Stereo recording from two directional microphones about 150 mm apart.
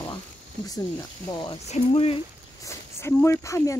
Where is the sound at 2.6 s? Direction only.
15° left (ahead or behind).